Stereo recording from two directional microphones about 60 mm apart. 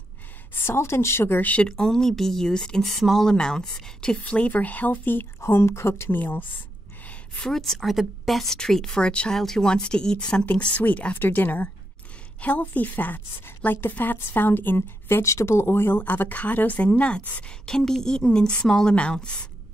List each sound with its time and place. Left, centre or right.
0.6 s a woman's voice: left
1.4 s speech: left
1.7 s speech: centre
4.2 s speech: left
5.4 s a woman's voice: left
7.3 s a woman's voice: centre
10.4 s a woman's voice: left
15.2 s a woman's voice: left; by 19.4 s centre